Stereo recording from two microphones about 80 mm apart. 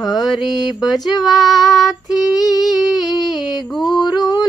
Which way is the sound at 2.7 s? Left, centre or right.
Centre.